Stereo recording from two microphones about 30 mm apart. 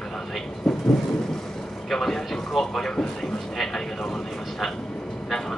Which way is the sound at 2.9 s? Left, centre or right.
Centre.